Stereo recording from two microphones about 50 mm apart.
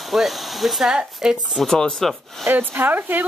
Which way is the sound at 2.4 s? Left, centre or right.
Right.